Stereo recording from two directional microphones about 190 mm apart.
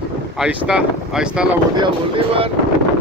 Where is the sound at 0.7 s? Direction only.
5° right (ahead or behind).